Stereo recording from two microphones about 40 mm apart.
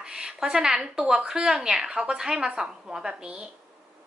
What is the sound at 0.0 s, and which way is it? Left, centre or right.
A woman's voice, centre.